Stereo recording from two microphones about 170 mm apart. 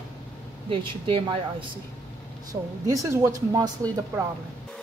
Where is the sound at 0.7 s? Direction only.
30° right (ahead or behind).